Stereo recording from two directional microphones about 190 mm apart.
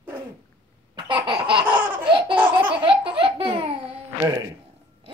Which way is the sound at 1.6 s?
10° right (ahead or behind).